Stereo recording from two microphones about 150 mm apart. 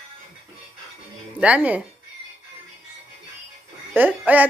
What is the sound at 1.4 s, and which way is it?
Speech, 10° right (ahead or behind).